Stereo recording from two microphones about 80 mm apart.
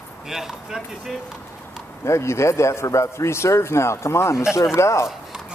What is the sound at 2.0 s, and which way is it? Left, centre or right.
Speech, left.